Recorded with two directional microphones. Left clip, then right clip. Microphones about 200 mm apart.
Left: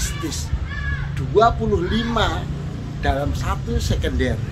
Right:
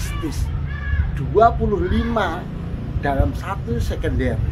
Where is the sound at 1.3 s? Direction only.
Centre (ahead or behind).